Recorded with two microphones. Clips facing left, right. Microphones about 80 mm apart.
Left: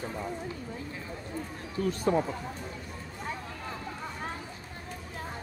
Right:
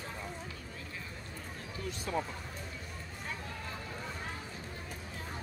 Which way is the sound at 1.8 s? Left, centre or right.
Left.